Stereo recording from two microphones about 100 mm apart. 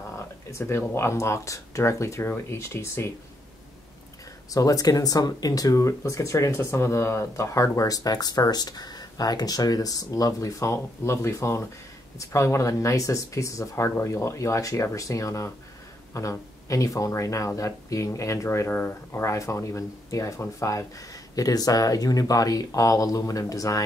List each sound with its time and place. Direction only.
0.1 s speech: 30° left (ahead or behind)
4.5 s speech: 35° left (ahead or behind)